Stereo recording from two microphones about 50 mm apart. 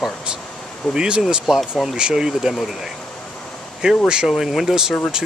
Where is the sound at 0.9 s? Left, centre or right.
Centre.